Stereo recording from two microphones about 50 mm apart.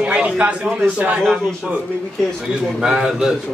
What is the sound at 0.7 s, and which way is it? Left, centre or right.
Speech, right.